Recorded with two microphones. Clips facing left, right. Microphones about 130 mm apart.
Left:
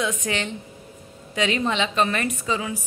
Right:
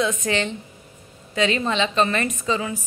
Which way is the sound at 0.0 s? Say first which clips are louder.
Right 3 dB; 10° left (ahead or behind).